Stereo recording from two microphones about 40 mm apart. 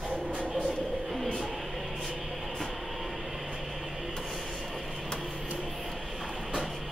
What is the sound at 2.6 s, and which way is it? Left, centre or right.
Train, centre.